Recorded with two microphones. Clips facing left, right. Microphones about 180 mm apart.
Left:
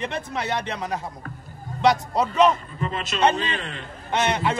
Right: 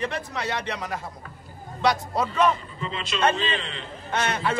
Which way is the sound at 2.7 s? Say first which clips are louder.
Left 3 dB; 50° left (ahead or behind).